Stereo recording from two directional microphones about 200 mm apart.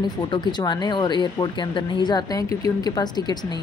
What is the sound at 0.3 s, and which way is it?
Speech, 20° left (ahead or behind).